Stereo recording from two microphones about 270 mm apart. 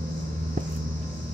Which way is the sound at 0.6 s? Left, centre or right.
Right.